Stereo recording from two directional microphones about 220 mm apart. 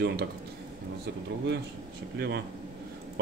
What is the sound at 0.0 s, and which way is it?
Speech, 45° right (ahead or behind).